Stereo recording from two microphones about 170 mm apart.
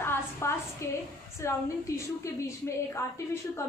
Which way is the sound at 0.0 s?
15° left (ahead or behind).